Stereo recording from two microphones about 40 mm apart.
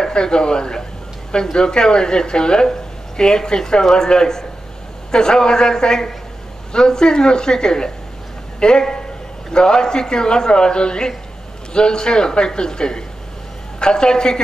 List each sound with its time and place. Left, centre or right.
0.0 s a woman's voice: centre